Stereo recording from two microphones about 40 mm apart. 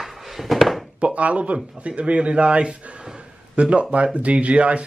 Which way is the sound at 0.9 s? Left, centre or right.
Right.